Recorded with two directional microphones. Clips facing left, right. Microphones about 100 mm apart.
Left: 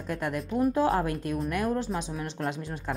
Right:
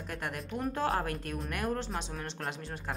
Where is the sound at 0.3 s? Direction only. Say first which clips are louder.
Left 10 dB; 20° left (ahead or behind).